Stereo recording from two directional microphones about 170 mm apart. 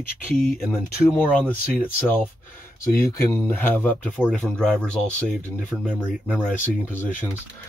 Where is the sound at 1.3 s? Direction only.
10° left (ahead or behind).